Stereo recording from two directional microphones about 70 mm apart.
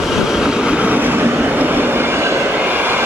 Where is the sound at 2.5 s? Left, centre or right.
Right.